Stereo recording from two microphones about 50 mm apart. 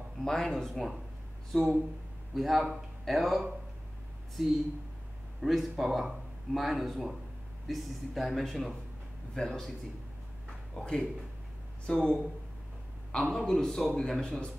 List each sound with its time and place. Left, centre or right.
0.2 s speech: centre
5.4 s a man's voice: centre
14.2 s speech: centre